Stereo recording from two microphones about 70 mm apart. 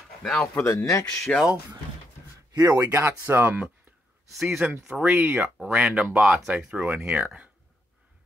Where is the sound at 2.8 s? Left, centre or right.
Right.